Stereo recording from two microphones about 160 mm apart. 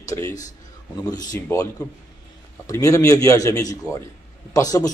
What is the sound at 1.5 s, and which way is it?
A man's voice, 15° left (ahead or behind).